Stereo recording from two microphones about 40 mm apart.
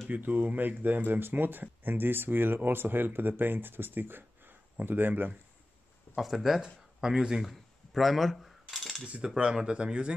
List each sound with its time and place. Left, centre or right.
0.1 s speech: right
6.1 s speech: centre
6.6 s speech: centre
7.9 s cutlery: centre
9.2 s speech: right